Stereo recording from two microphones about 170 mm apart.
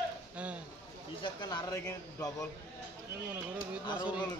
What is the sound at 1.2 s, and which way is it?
A man's voice, 25° left (ahead or behind).